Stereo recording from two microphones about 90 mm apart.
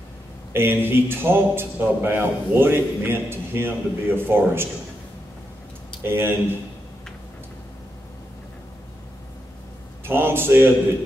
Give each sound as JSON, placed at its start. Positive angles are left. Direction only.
{"t": 0.5, "sound": "a man's voice", "side_deg": -25}
{"t": 6.0, "sound": "a man's voice", "side_deg": -25}
{"t": 10.0, "sound": "a man's voice", "side_deg": -25}